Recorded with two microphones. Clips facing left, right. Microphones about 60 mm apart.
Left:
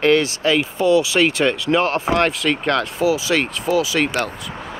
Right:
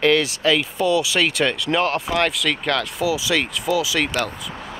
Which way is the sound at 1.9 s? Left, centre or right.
Left.